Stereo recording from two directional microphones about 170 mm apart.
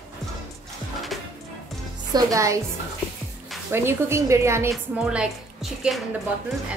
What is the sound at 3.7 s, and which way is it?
A woman's voice, 15° right (ahead or behind).